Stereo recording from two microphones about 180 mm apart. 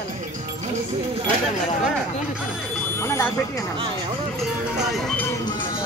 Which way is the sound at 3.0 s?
15° left (ahead or behind).